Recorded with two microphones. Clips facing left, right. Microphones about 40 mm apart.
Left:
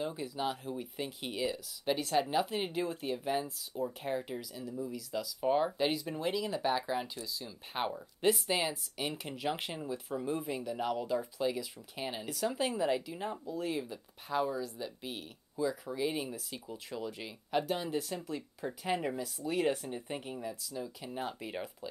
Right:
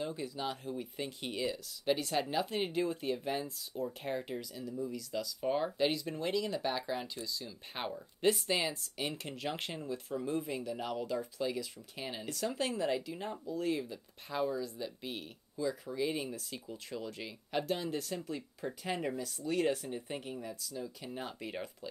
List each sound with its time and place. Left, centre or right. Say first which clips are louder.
0.0 s speech: left 2 dB; centre